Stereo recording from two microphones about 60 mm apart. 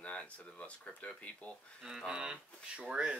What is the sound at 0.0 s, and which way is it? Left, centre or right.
Speech, left.